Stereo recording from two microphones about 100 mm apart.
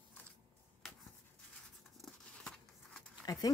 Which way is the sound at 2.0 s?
5° left (ahead or behind).